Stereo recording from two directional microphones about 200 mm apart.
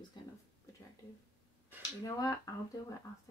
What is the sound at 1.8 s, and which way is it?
Speech, 20° left (ahead or behind).